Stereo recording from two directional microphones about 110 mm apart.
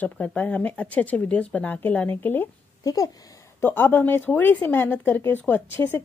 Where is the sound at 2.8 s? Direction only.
30° left (ahead or behind).